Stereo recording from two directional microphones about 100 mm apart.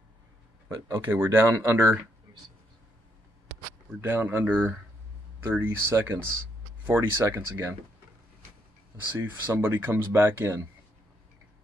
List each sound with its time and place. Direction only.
0.8 s speech: 25° right (ahead or behind)
4.0 s speech: 20° right (ahead or behind)
9.2 s speech: 20° right (ahead or behind)